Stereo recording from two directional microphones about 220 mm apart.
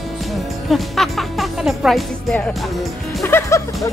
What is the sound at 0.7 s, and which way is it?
Speech, centre (ahead or behind).